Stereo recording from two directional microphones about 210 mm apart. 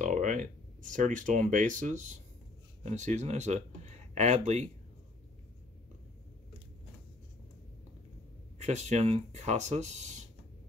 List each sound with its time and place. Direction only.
0.0 s speech: 35° right (ahead or behind)
8.5 s speech: 30° right (ahead or behind)